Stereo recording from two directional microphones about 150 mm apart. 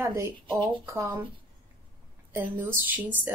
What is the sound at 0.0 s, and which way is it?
Speech, 15° right (ahead or behind).